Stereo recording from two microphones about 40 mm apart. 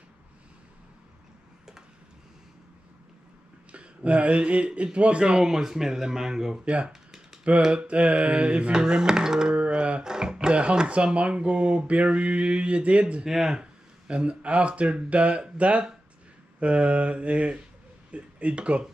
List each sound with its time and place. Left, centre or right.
3.7 s speech: right
5.4 s speech: centre
6.6 s speech: right
8.7 s speech: centre
9.5 s a sound: right
10.0 s speech: centre
13.2 s speech: centre
13.6 s speech: right